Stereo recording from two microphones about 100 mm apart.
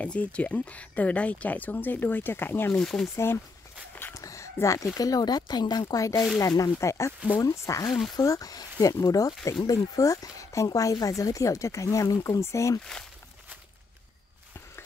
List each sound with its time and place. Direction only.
0.0 s speech: 10° left (ahead or behind)
2.8 s speech: 5° left (ahead or behind)
4.1 s a sound: 30° left (ahead or behind)
4.9 s speech: 40° left (ahead or behind)